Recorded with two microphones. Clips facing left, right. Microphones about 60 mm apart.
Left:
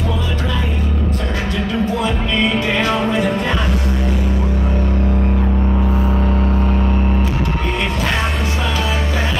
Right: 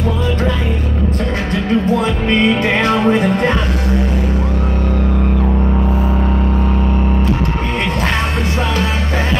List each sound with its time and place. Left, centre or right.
2.0 s music: right